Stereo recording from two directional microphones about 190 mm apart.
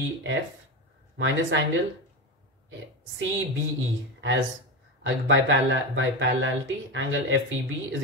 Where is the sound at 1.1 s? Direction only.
80° right.